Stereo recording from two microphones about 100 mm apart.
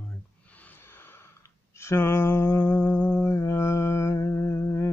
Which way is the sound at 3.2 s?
30° left (ahead or behind).